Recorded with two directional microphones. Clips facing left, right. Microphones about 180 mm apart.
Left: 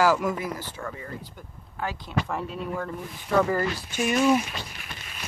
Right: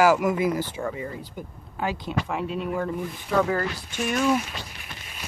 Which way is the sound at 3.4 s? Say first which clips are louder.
Even; 5° left (ahead or behind).